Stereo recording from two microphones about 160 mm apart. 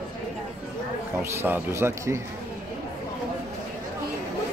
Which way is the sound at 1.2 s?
15° right (ahead or behind).